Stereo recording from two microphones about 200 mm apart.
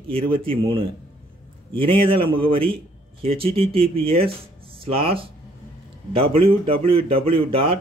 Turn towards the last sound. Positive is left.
turn(degrees=-30)  # may be behind; listen again after turning